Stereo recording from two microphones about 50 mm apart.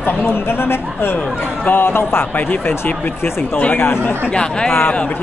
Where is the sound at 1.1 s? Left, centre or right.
Left.